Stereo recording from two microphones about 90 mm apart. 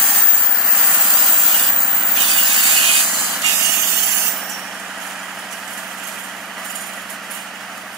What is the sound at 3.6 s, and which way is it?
Vehicle, 35° right (ahead or behind).